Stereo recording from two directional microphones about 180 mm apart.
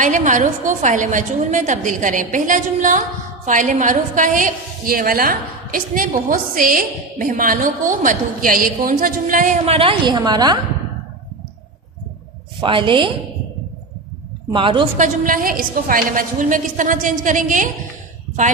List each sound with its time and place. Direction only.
0.0 s a woman's voice: 45° right (ahead or behind)
9.8 s a woman's voice: 30° right (ahead or behind)
12.5 s a woman's voice: 30° right (ahead or behind)
14.5 s a woman's voice: 30° right (ahead or behind)
15.0 s a woman's voice: 50° right (ahead or behind)